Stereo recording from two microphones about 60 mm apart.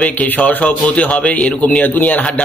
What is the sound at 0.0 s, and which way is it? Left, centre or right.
A man's voice, left.